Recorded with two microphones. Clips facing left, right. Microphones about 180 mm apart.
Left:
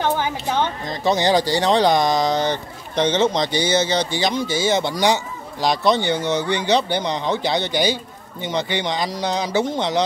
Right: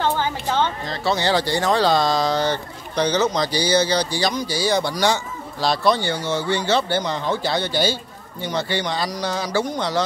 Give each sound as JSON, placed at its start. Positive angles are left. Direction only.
{"t": 0.0, "sound": "music", "side_deg": 15}
{"t": 1.5, "sound": "speech", "side_deg": 20}